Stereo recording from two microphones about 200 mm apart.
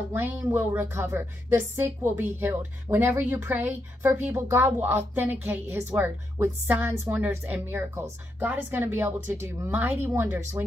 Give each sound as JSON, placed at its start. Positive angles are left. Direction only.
{"t": 0.1, "sound": "a woman's voice", "side_deg": -10}